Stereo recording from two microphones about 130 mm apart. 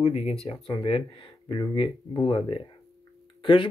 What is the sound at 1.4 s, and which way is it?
Speech, 35° left (ahead or behind).